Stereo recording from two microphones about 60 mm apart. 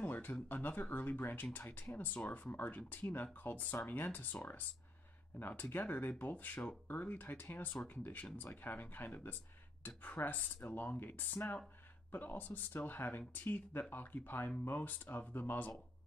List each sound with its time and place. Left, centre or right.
0.0 s speech: left
5.4 s speech: left